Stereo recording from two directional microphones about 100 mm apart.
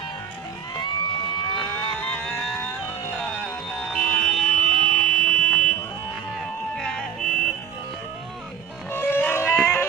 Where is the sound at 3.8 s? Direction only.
10° left (ahead or behind).